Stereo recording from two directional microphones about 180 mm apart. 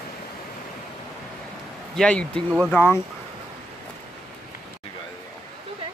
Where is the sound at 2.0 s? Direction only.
5° left (ahead or behind).